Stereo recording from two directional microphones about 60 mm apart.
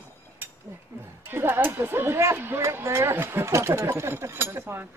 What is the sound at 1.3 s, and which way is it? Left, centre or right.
Speech, right.